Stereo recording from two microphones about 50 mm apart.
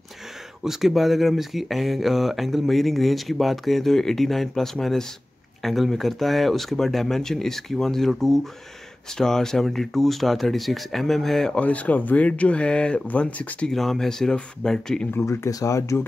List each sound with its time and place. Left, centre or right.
0.7 s speech: centre
11.5 s speech: left
13.7 s speech: centre
15.2 s speech: left